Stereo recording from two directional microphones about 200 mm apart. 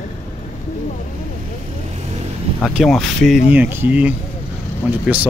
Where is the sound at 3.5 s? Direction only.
10° right (ahead or behind).